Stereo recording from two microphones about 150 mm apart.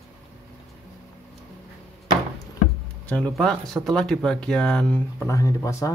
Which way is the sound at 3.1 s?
10° left (ahead or behind).